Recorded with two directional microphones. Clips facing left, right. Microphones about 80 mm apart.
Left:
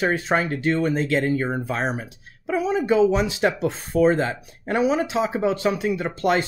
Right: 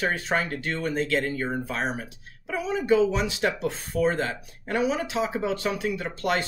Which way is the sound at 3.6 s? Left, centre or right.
Left.